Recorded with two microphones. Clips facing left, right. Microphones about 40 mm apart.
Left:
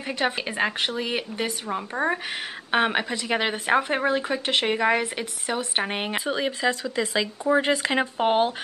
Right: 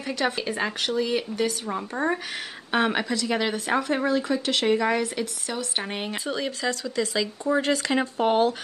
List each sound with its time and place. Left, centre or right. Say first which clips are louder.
0.0 s speech: even; left